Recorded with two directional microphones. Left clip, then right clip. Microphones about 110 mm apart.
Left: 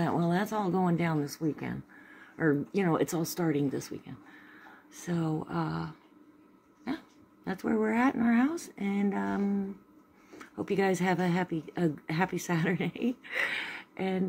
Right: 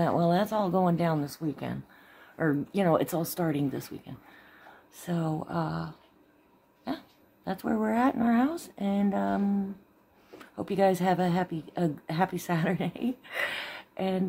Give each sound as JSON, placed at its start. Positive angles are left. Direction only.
{"t": 0.0, "sound": "speech", "side_deg": -15}
{"t": 7.6, "sound": "speech", "side_deg": -5}
{"t": 7.9, "sound": "speech", "side_deg": -20}
{"t": 10.4, "sound": "speech", "side_deg": -15}